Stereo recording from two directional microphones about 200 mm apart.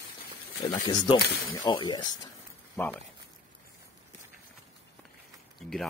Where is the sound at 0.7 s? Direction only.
20° left (ahead or behind).